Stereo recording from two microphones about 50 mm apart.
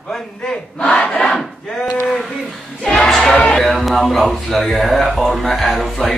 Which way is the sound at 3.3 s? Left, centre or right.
Centre.